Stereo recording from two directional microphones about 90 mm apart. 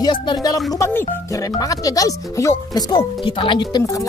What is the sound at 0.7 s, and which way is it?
Speech, 35° left (ahead or behind).